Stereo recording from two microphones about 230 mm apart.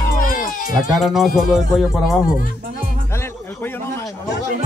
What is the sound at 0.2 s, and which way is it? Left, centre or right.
Cat, left.